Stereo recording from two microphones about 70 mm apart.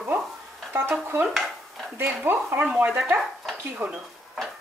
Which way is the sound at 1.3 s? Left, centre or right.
Centre.